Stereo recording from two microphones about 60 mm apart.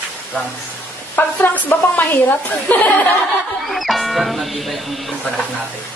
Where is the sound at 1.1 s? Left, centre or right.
Left.